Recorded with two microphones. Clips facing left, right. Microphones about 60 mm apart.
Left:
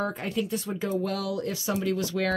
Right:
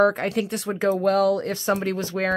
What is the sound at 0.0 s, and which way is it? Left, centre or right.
Speech, right.